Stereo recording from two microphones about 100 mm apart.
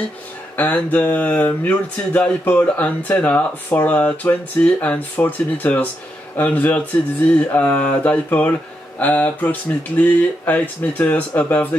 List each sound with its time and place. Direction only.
0.6 s speech: 15° left (ahead or behind)